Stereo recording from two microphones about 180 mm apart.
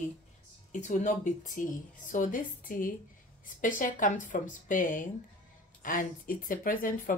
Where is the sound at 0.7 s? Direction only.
45° left (ahead or behind).